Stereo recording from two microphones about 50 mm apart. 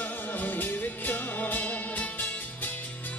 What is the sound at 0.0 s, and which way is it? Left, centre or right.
Music, left.